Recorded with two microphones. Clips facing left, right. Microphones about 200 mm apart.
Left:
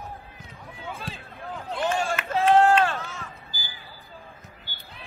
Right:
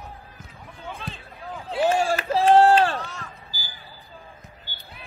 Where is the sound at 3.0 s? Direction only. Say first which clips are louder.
Right 2 dB; centre (ahead or behind).